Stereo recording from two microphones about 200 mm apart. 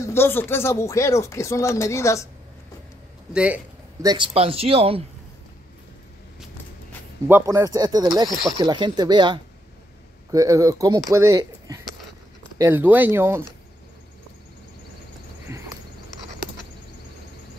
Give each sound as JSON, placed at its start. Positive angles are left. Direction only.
{"t": 0.0, "sound": "speech", "side_deg": 10}
{"t": 3.3, "sound": "speech", "side_deg": -5}
{"t": 4.0, "sound": "speech", "side_deg": -20}
{"t": 7.2, "sound": "speech", "side_deg": -15}
{"t": 15.5, "sound": "a sound", "side_deg": -10}